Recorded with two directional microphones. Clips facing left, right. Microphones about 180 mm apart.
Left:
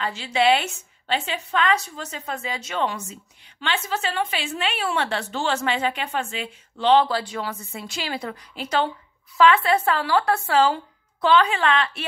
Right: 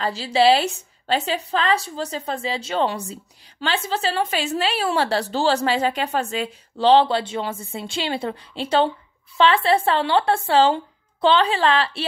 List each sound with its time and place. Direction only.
0.0 s a woman's voice: 35° right (ahead or behind)